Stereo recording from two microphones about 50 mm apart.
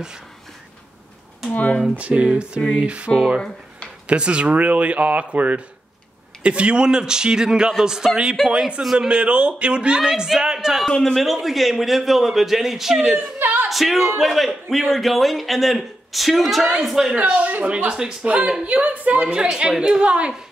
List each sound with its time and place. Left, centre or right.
1.5 s speech: left
2.0 s speech: right
4.1 s speech: right
10.9 s speech: centre
11.4 s a man's voice: centre
13.4 s a sound: right
13.7 s a man's voice: centre
17.1 s speech: right
18.7 s speech: right
19.2 s speech: centre